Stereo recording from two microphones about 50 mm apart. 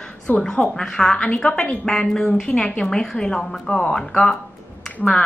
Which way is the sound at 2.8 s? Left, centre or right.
Centre.